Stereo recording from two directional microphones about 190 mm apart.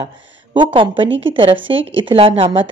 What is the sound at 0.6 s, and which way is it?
A woman's voice, 25° right (ahead or behind).